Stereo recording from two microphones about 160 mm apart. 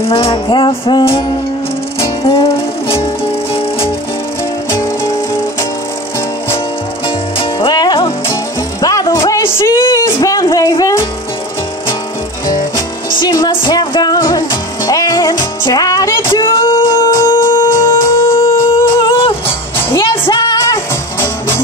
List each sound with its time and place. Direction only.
0.0 s music: 35° left (ahead or behind)
4.6 s music: 20° left (ahead or behind)
7.1 s music: 35° left (ahead or behind)
8.8 s a sound: 20° left (ahead or behind)
13.2 s music: 30° left (ahead or behind)
16.7 s music: 15° left (ahead or behind)
18.3 s music: 35° left (ahead or behind)
20.9 s music: 15° left (ahead or behind)